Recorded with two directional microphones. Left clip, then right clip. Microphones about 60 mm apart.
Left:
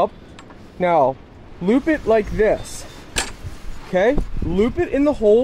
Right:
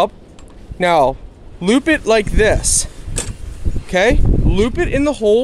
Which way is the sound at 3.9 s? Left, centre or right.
Right.